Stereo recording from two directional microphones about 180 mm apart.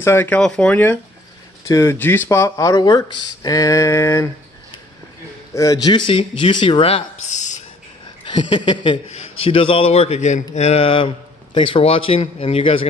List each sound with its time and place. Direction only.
0.0 s speech: 10° left (ahead or behind)
5.5 s speech: 20° left (ahead or behind); by 7.6 s 40° left (ahead or behind)
8.3 s a man's voice: 25° left (ahead or behind)